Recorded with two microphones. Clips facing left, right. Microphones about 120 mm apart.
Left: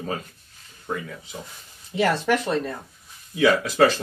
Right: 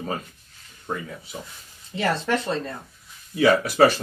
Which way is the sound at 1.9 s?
20° left (ahead or behind).